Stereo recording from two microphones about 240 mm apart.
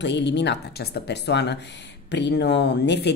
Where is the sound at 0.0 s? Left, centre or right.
Left.